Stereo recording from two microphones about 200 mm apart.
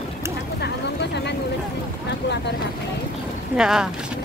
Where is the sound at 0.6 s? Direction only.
60° left (ahead or behind).